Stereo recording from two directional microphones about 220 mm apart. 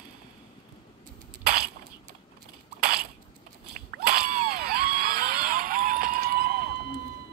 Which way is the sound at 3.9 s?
45° right (ahead or behind).